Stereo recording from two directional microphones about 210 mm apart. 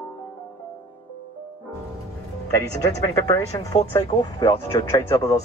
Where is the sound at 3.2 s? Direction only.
20° left (ahead or behind).